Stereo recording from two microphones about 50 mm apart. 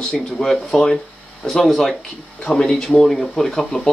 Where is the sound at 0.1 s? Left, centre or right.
Centre.